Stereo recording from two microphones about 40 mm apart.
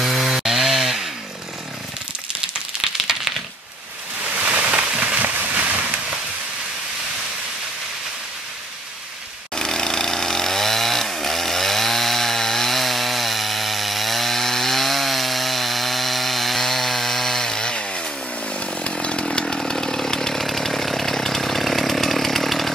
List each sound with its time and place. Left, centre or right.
0.0 s wood: centre
4.4 s a sound: right
9.6 s chainsaw: centre